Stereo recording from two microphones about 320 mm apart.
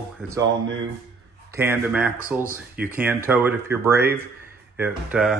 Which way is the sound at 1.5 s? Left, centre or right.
Centre.